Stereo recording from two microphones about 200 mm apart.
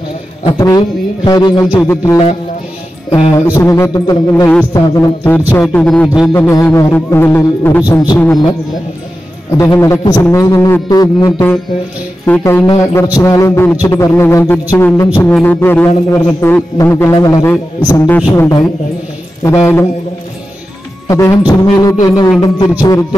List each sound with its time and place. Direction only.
0.5 s music: 20° left (ahead or behind)
3.5 s a man's voice: 15° left (ahead or behind)
8.2 s music: 20° left (ahead or behind)
9.6 s a man's voice: 15° left (ahead or behind)
21.1 s a man's voice: 15° left (ahead or behind)
22.0 s music: 20° left (ahead or behind)
22.4 s a man's voice: 20° left (ahead or behind)